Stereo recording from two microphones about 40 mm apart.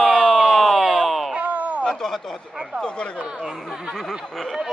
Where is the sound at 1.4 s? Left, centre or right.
Right.